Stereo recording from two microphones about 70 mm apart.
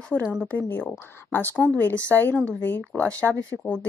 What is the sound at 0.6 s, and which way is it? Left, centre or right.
Speech, left.